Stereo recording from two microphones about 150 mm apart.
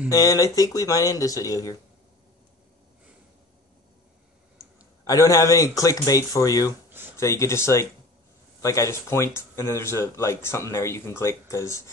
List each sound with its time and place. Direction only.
0.1 s speech: 25° left (ahead or behind)
5.0 s speech: 20° left (ahead or behind)